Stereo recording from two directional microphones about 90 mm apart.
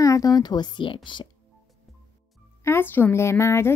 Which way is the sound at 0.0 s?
40° left (ahead or behind).